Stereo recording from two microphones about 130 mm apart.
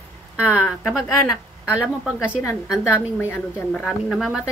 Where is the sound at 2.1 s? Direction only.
20° left (ahead or behind).